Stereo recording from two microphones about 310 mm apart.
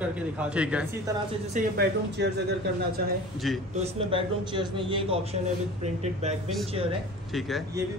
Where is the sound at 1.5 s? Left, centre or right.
Right.